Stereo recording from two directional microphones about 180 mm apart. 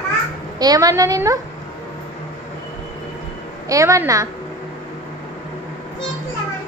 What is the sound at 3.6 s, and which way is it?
Speech, 15° right (ahead or behind).